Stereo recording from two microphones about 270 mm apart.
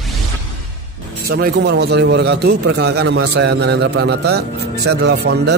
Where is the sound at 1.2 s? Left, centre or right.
Right.